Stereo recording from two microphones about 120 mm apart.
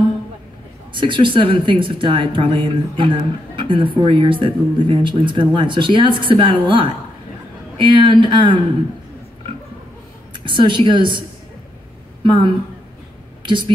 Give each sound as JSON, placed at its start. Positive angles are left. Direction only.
{"t": 0.9, "sound": "speech", "side_deg": -45}
{"t": 10.3, "sound": "a woman's voice", "side_deg": -40}